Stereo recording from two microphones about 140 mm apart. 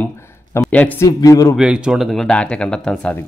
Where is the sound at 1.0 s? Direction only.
25° left (ahead or behind).